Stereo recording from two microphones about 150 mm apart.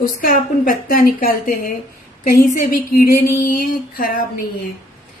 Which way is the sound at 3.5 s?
65° left (ahead or behind).